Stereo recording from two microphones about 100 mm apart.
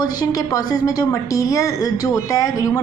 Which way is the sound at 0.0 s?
40° left (ahead or behind).